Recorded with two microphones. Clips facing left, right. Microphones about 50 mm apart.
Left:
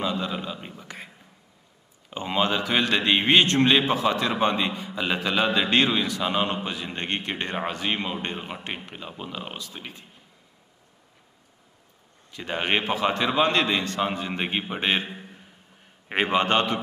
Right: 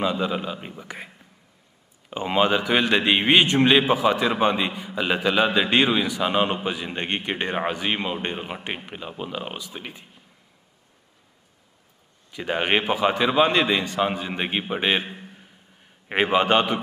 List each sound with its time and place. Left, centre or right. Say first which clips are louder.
0.0 s a man's voice: right 4 dB; centre
12.3 s a man's voice: right 3 dB; centre